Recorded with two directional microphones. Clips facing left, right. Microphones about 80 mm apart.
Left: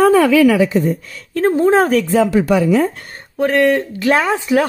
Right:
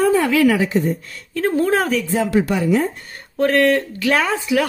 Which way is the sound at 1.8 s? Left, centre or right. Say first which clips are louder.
Left 6 dB; left.